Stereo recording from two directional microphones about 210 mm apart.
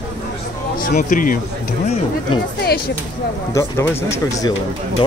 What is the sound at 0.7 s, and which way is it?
Speech, 40° left (ahead or behind).